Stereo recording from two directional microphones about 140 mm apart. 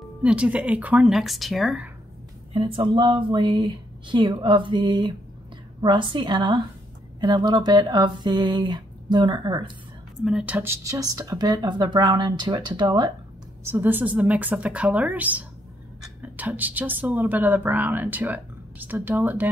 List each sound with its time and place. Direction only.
0.2 s a woman's voice: 10° right (ahead or behind)
2.5 s speech: 40° right (ahead or behind)
10.2 s speech: 5° right (ahead or behind); by 13.1 s 30° right (ahead or behind)
13.7 s a woman's voice: 15° right (ahead or behind)